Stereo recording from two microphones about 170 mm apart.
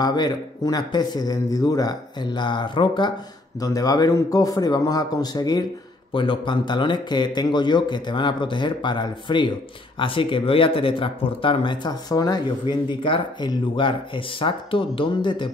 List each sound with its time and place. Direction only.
0.0 s speech: 25° left (ahead or behind)